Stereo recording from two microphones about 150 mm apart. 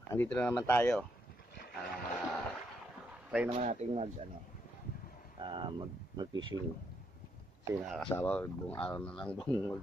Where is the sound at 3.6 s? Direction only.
50° right (ahead or behind).